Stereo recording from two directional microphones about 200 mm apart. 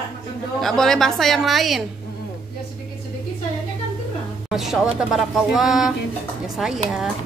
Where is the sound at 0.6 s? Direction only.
Centre (ahead or behind).